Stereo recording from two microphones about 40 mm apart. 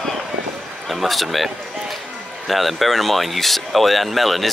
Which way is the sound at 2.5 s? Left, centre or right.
Centre.